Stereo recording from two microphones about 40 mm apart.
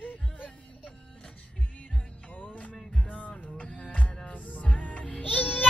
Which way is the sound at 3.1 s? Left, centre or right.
Left.